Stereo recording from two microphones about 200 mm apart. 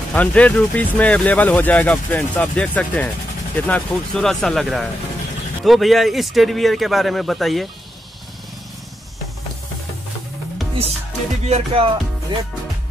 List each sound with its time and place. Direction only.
0.1 s speech: 5° left (ahead or behind)
11.4 s music: 30° right (ahead or behind)